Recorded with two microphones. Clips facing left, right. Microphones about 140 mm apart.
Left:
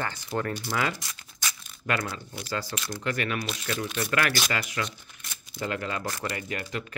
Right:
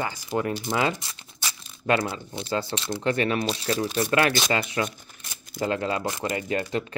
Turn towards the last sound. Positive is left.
turn(degrees=-30)  # may be behind; listen again after turning